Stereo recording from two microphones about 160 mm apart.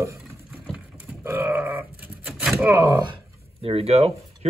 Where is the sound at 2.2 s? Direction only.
Centre (ahead or behind).